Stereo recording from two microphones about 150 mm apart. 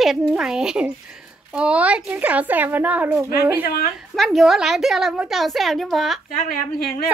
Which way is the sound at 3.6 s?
90° left.